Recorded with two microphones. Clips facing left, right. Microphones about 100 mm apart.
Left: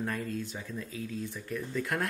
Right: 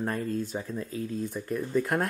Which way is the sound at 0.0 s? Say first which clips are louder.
Right 4 dB; 40° right (ahead or behind).